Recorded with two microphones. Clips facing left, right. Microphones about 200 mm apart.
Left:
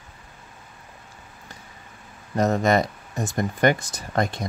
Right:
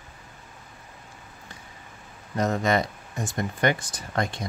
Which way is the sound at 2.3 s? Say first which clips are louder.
Left 4 dB; 40° left (ahead or behind).